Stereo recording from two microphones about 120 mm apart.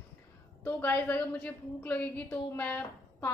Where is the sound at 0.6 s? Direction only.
20° left (ahead or behind).